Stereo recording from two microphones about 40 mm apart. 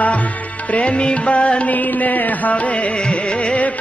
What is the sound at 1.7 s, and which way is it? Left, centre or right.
Music, left.